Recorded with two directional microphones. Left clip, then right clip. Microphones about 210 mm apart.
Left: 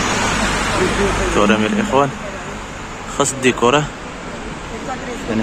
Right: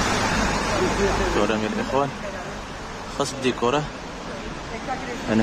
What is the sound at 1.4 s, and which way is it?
Speech, 5° left (ahead or behind).